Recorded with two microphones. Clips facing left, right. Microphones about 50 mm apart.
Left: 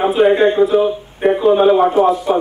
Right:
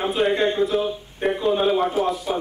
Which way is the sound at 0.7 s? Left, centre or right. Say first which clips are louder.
Left 9 dB; centre.